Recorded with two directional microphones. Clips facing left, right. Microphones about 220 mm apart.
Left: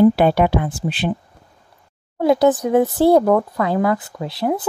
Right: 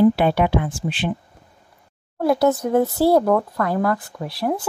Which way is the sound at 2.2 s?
20° left (ahead or behind).